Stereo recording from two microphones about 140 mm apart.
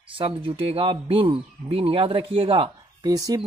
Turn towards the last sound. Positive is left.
turn(degrees=-25)  # may be behind; listen again after turning